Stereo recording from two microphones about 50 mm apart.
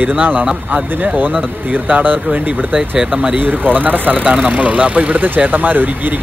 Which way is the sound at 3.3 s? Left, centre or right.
Right.